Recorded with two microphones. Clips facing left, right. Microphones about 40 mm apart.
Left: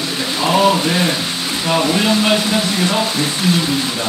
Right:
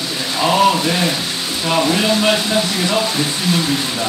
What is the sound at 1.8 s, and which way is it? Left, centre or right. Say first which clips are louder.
Speech: even; centre.